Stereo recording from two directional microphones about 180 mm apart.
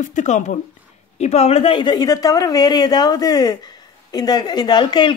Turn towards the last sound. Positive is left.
turn(degrees=25)  # may be behind; listen again after turning